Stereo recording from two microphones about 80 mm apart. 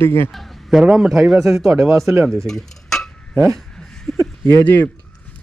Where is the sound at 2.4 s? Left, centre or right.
Centre.